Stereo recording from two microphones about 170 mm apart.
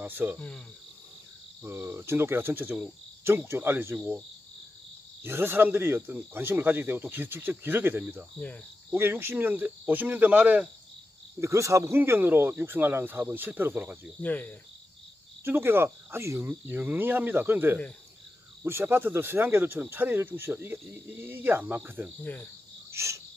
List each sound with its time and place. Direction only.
0.0 s cricket: 10° right (ahead or behind)
1.6 s speech: 15° right (ahead or behind)
5.2 s speech: 15° right (ahead or behind)
14.2 s cricket: 10° left (ahead or behind)
15.4 s speech: 15° right (ahead or behind)
22.2 s cricket: 10° left (ahead or behind)
22.8 s cricket: 15° right (ahead or behind)